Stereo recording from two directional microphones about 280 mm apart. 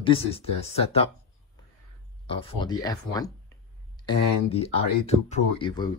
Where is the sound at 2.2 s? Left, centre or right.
Centre.